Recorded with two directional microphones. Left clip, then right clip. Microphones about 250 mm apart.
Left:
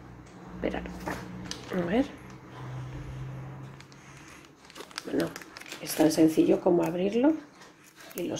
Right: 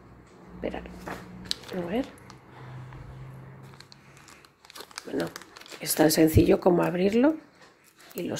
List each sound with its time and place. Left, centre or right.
0.6 s speech: centre
4.9 s crumpling: centre
5.8 s speech: right